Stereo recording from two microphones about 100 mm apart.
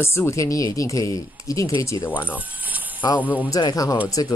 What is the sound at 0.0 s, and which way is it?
Speech, 25° left (ahead or behind).